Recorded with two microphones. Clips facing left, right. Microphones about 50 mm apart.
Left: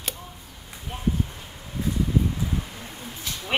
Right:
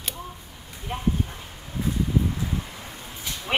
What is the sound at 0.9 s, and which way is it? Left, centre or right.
Clip-clop, right.